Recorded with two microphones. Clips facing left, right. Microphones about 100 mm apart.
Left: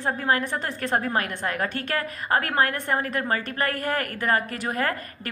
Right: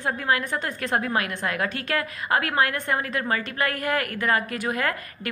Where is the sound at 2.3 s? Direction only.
35° left (ahead or behind).